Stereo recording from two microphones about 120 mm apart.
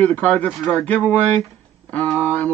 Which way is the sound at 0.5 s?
Centre (ahead or behind).